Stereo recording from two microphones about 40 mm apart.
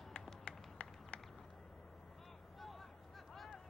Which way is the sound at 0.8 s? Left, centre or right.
Left.